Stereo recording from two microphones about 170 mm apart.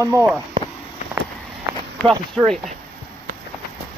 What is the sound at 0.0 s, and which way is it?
Speech, 15° right (ahead or behind).